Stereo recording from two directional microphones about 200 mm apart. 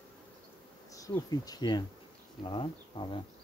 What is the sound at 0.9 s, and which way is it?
Speech, 15° left (ahead or behind).